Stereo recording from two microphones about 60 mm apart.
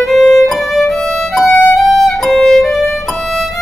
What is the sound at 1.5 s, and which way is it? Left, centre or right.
Violin, left.